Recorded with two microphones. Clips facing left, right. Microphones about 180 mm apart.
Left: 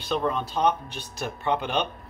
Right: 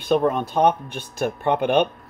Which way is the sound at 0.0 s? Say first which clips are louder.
Right 7 dB; 50° right (ahead or behind).